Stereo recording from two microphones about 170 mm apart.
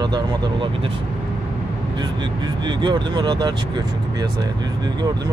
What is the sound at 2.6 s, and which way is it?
Speech, 25° right (ahead or behind).